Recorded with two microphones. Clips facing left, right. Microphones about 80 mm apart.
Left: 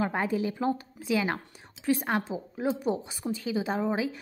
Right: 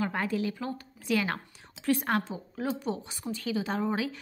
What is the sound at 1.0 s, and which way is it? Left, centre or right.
A woman's voice, centre.